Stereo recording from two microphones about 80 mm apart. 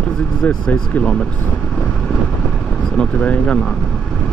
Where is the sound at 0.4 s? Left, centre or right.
Centre.